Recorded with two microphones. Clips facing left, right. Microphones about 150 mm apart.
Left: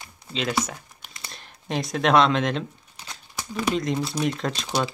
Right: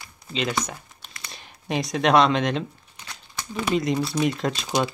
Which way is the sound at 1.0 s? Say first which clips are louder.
Even; 20° left (ahead or behind).